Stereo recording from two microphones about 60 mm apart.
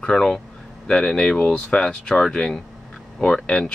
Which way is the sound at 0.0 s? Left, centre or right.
Centre.